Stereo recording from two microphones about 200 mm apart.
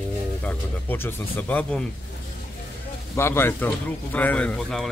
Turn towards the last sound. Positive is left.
turn(degrees=5)  # may be behind; listen again after turning